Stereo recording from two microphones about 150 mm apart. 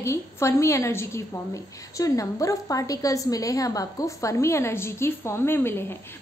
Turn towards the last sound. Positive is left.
turn(degrees=15)  # may be behind; listen again after turning